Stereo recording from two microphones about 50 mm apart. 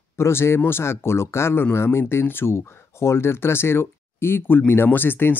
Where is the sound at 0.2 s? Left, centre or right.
Left.